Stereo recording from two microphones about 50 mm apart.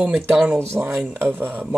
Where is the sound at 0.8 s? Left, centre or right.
Right.